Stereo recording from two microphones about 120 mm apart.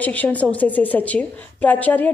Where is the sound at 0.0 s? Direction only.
15° left (ahead or behind).